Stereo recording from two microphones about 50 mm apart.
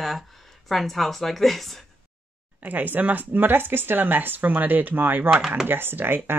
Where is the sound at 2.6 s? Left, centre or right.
Right.